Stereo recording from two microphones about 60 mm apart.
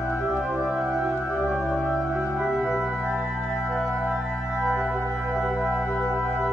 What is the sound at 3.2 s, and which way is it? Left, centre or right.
Music, centre.